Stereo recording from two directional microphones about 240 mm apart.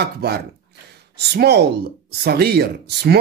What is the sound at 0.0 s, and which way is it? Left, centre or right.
A woman's voice, right.